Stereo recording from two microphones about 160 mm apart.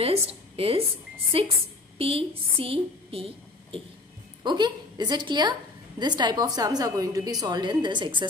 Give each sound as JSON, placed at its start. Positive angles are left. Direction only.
{"t": 0.0, "sound": "a woman's voice", "side_deg": -40}